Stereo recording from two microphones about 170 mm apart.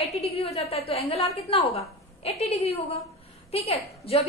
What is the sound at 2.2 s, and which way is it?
A woman's voice, 40° left (ahead or behind).